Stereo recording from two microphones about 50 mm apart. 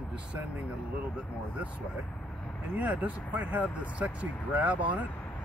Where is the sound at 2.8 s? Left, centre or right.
Right.